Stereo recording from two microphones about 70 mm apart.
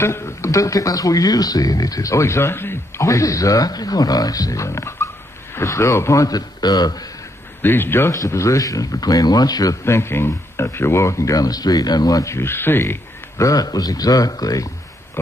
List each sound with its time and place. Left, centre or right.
0.0 s a man's voice: left
0.5 s speech: left
3.0 s speech: left
6.2 s speech: left
7.6 s speech: left
8.1 s speech: left
9.8 s speech: left
12.4 s speech: left
13.4 s speech: left